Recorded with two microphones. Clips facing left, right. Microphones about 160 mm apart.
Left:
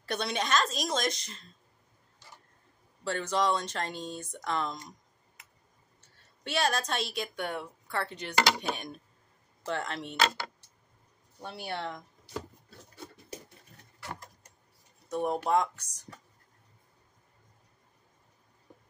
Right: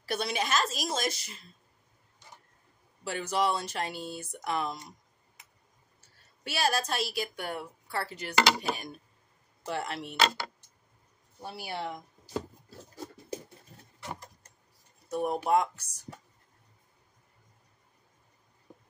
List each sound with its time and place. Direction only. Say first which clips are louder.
0.0 s speech: right 1 dB; 5° right (ahead or behind)
3.0 s speech: even; 10° right (ahead or behind)
5.9 s a sound: left 1 dB; 5° right (ahead or behind)
7.3 s speech: left 1 dB; 5° right (ahead or behind)
11.4 s speech: even; 5° right (ahead or behind)
12.6 s a sound: right 4 dB; 35° right (ahead or behind)
15.0 s speech: right 1 dB; 5° right (ahead or behind)